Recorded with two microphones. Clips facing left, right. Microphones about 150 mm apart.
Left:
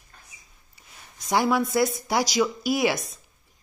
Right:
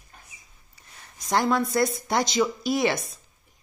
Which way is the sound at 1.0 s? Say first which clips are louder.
Left 1 dB; 5° left (ahead or behind).